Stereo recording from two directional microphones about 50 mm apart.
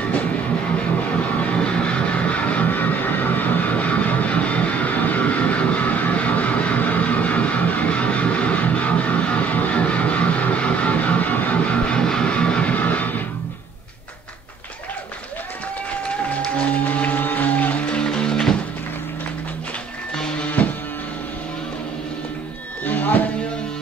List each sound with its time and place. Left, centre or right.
1.4 s music: left
12.7 s music: left
16.8 s music: left; by 18.6 s centre
20.2 s music: centre
22.8 s music: left